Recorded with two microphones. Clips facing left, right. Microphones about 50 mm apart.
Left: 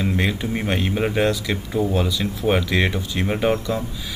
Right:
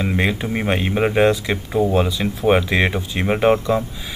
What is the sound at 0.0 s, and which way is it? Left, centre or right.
Speech, centre.